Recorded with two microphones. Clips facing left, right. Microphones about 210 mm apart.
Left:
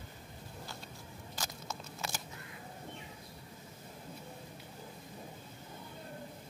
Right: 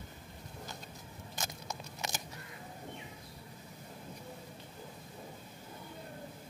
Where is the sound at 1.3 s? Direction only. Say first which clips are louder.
Right 1 dB; 20° right (ahead or behind).